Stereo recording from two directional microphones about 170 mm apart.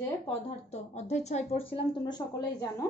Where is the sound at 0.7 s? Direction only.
40° left (ahead or behind); by 2.7 s 25° left (ahead or behind).